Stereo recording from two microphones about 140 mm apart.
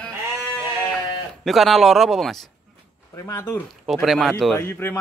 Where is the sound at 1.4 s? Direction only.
Centre (ahead or behind).